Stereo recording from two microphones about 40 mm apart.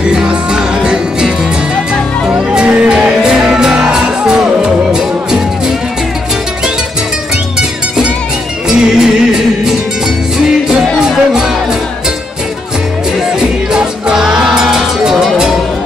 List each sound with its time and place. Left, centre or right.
0.0 s music: right
2.3 s music: right
8.6 s music: centre
14.1 s music: centre